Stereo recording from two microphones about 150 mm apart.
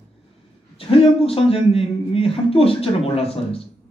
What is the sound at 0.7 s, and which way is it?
Speech, 40° left (ahead or behind).